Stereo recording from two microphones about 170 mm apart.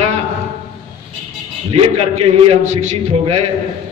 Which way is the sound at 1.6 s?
35° right (ahead or behind).